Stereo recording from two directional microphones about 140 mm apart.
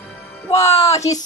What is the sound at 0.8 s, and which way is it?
Speech, 25° left (ahead or behind).